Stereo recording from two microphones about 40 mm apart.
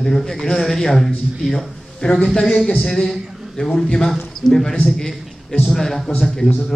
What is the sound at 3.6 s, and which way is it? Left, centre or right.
Speech, left.